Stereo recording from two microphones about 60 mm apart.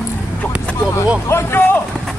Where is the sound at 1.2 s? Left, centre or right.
Left.